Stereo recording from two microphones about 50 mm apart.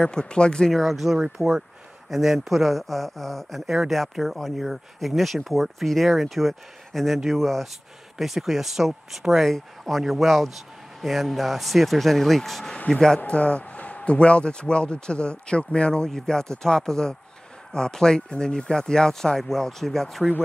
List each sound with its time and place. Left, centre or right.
0.0 s speech: centre
3.6 s speech: centre
4.2 s speech: centre
12.7 s speech: centre
13.2 s speech: left; by 20.2 s centre